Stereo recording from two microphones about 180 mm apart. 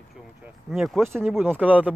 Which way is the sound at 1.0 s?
15° right (ahead or behind).